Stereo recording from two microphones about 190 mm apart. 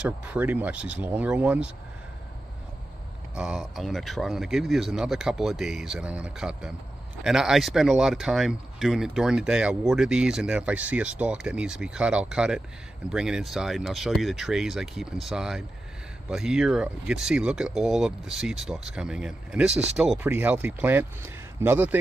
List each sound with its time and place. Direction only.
0.2 s speech: 10° right (ahead or behind)
3.3 s speech: centre (ahead or behind)
19.7 s speech: 35° right (ahead or behind)
20.0 s speech: 5° right (ahead or behind)